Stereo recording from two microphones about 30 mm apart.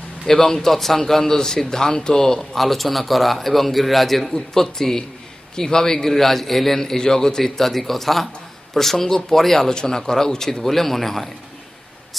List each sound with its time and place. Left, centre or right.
0.3 s speech: centre
2.5 s a man's voice: centre
6.8 s speech: centre
9.6 s speech: centre